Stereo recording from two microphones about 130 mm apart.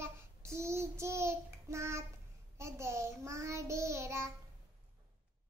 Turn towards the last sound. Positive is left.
turn(degrees=-20)  # may be behind; listen again after turning